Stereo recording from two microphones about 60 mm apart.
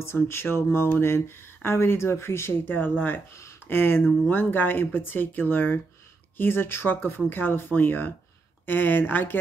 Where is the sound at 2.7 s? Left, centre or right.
Left.